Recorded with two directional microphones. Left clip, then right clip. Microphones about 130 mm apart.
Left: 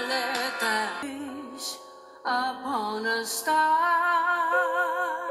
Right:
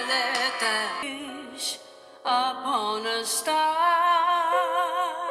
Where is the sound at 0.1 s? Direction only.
40° right (ahead or behind).